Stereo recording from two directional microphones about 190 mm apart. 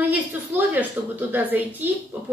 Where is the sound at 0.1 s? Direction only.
10° right (ahead or behind).